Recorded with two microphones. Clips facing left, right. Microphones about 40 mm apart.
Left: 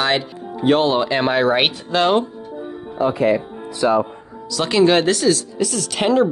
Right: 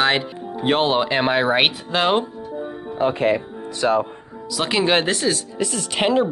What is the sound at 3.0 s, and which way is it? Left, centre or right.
Speech, right.